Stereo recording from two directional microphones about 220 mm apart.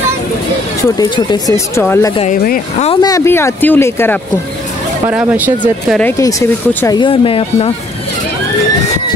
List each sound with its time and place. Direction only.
0.8 s speech: 20° left (ahead or behind)
2.2 s speech: 40° left (ahead or behind)
2.9 s speech: 15° left (ahead or behind)
5.0 s speech: 10° right (ahead or behind)
5.9 s speech: 5° left (ahead or behind)
7.0 s speech: 25° left (ahead or behind)